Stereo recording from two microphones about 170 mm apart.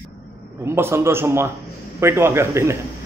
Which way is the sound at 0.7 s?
15° right (ahead or behind).